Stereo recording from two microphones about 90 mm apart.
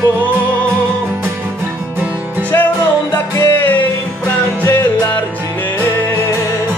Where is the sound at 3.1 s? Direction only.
25° left (ahead or behind).